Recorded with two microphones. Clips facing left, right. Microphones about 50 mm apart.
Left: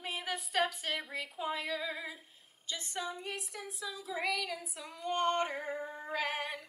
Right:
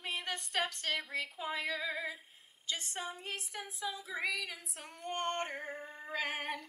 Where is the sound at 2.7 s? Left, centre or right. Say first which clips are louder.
Left 4 dB; right.